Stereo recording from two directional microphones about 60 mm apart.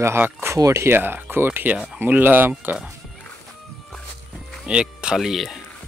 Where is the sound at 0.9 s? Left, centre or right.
Right.